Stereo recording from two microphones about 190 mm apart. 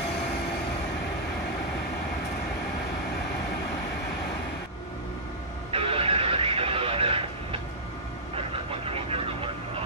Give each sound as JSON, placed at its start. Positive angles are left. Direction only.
{"t": 5.7, "sound": "radio", "side_deg": -30}
{"t": 8.4, "sound": "vehicle", "side_deg": -30}